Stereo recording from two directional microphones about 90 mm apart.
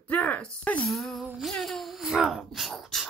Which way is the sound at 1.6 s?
Centre (ahead or behind).